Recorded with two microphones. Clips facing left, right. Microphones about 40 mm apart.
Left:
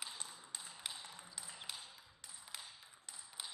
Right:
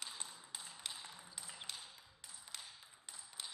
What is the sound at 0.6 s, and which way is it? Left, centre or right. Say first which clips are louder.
Tap: even; centre.